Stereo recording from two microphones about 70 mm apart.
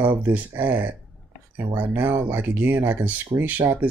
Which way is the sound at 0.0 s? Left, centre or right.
Right.